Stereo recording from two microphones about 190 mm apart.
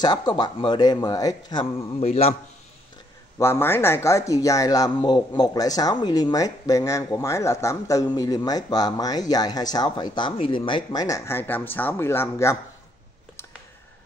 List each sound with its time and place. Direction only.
0.0 s speech: 20° left (ahead or behind)
2.0 s a man's voice: 35° left (ahead or behind)
3.3 s speech: 15° left (ahead or behind)